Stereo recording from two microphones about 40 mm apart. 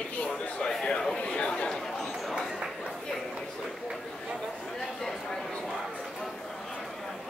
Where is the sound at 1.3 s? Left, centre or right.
Left.